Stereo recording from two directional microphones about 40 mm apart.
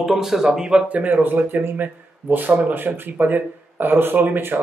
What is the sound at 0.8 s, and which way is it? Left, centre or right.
A man's voice, right.